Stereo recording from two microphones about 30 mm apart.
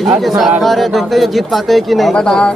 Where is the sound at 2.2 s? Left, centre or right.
Left.